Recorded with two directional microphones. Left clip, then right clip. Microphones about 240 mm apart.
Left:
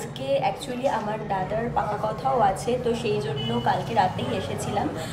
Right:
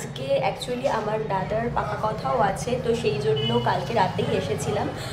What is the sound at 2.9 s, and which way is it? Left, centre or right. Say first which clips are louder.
Speech: right 2 dB; right.